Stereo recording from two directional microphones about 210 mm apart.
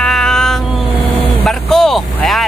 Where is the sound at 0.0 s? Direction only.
5° left (ahead or behind).